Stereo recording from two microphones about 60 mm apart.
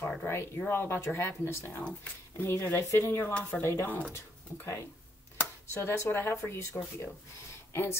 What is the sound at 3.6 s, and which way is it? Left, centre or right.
Speech, left.